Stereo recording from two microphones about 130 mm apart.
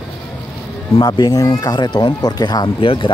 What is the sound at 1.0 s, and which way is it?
Speech, 30° left (ahead or behind).